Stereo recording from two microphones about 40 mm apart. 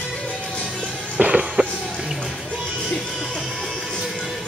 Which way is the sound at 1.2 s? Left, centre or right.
Right.